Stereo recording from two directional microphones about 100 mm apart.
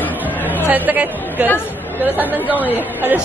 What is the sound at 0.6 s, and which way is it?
Speech, 15° right (ahead or behind).